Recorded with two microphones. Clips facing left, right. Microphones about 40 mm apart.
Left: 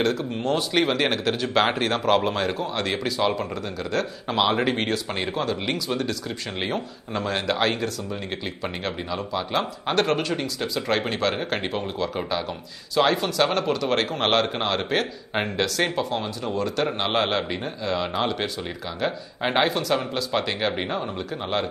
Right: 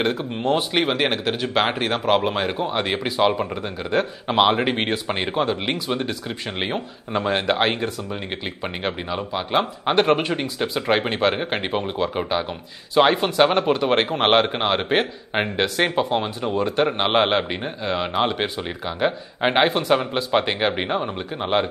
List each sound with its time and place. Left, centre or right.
0.0 s speech: right